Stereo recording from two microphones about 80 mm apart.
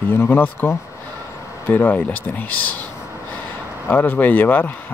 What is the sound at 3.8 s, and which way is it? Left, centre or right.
Speech, left.